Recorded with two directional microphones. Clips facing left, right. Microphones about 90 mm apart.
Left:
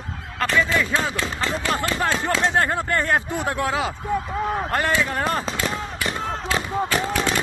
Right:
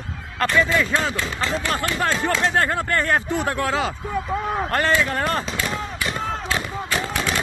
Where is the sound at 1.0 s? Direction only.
10° left (ahead or behind).